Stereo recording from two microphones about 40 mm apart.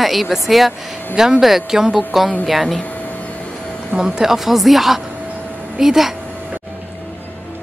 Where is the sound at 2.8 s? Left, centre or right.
Left.